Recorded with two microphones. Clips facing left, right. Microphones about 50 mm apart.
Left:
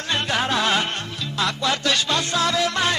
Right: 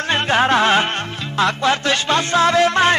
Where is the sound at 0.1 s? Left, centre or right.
Right.